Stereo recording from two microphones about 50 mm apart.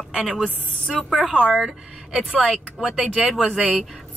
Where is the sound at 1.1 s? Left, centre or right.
Centre.